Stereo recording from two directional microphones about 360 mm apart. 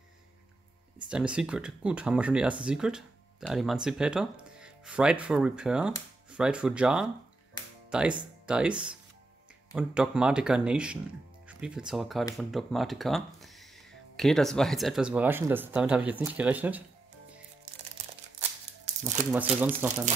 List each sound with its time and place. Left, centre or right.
0.9 s speech: centre
9.8 s speech: centre
18.9 s music: centre
19.6 s speech: centre